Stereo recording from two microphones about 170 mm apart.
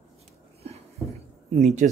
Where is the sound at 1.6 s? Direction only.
40° right (ahead or behind).